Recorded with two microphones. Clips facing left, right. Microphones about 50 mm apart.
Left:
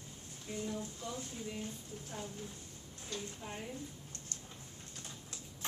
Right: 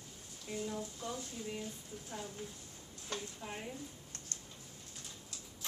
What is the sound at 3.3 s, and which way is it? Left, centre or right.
Speech, centre.